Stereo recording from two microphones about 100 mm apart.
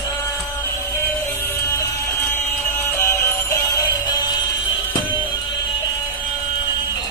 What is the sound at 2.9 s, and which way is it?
Music, 25° left (ahead or behind).